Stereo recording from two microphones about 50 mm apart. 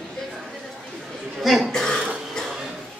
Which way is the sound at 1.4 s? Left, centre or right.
Centre.